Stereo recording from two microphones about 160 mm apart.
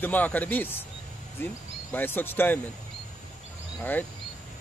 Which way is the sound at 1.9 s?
10° left (ahead or behind).